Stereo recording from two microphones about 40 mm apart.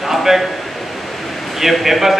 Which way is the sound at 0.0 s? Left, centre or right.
Centre.